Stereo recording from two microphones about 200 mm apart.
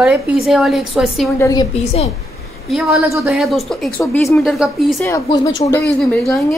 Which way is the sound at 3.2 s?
Centre (ahead or behind).